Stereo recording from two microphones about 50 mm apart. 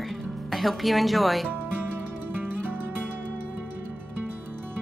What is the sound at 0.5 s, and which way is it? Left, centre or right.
Speech, centre.